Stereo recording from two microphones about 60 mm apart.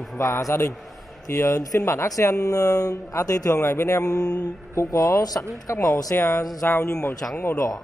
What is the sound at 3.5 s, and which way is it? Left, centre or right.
Speech, left.